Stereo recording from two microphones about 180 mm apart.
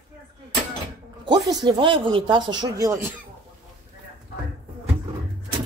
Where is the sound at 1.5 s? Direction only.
25° right (ahead or behind).